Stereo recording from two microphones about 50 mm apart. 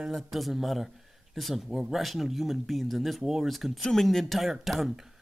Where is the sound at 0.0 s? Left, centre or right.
Centre.